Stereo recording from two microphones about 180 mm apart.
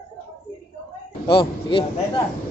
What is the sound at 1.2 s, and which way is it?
Speech, 30° left (ahead or behind).